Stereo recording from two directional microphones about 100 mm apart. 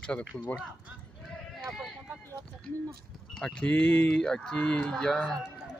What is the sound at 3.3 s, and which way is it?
Speech, 5° left (ahead or behind).